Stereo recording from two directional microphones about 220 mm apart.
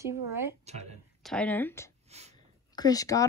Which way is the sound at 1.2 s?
5° left (ahead or behind).